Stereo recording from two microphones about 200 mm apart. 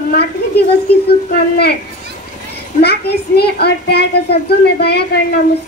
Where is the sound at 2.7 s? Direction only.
55° left (ahead or behind).